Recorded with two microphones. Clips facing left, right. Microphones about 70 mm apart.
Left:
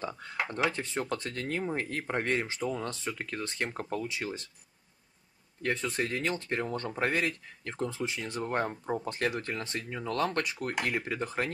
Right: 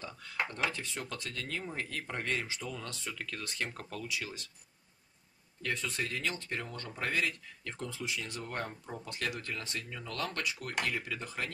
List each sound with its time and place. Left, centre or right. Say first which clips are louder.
0.0 s a sound: left 8 dB; left
0.7 s speech: left 7 dB; left
5.6 s speech: left 5 dB; left